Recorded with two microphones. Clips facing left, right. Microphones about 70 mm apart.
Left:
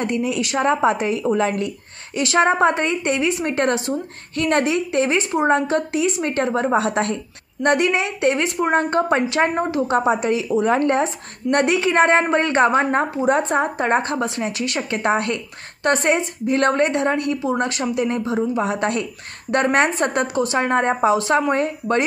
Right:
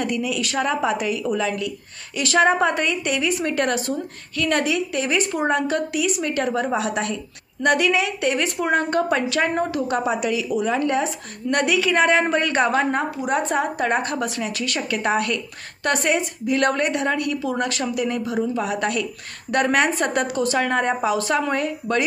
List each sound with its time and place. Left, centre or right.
0.0 s a woman's voice: left